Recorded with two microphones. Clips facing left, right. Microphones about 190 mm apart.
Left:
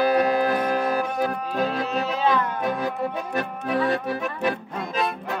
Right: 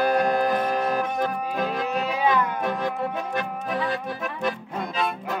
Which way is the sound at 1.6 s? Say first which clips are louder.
Left 1 dB; 15° right (ahead or behind).